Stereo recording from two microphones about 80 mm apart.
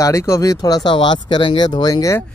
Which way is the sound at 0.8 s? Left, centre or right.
Left.